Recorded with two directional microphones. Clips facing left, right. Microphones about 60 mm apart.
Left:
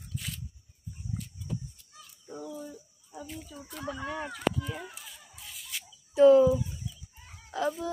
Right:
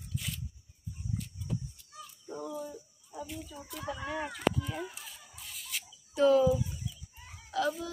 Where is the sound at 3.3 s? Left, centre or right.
Centre.